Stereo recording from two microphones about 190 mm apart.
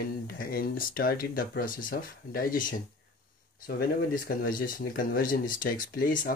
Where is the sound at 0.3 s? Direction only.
50° left (ahead or behind).